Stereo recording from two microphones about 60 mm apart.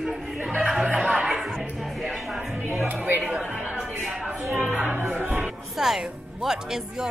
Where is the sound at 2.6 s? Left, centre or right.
Right.